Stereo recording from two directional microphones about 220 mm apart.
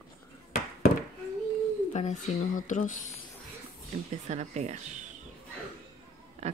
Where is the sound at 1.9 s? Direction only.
30° left (ahead or behind).